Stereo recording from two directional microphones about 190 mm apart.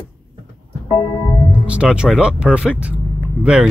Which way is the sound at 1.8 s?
5° right (ahead or behind).